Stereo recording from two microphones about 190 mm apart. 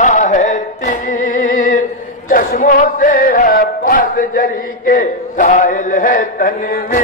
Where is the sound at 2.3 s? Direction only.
45° left (ahead or behind).